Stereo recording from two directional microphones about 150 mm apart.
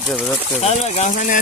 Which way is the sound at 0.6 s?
45° left (ahead or behind).